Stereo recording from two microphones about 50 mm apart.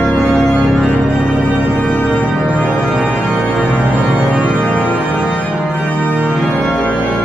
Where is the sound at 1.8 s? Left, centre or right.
Left.